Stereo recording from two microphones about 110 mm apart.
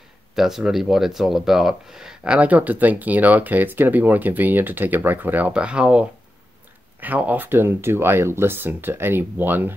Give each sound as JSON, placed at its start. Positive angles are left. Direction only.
{"t": 0.4, "sound": "speech", "side_deg": -5}